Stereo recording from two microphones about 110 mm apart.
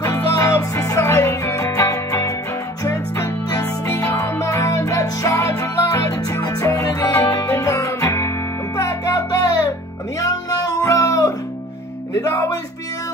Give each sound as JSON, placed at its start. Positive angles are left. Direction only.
{"t": 0.3, "sound": "music", "side_deg": 30}
{"t": 3.4, "sound": "music", "side_deg": 30}